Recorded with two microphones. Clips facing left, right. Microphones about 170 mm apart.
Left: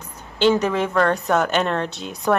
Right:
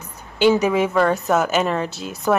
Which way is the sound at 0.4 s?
10° right (ahead or behind).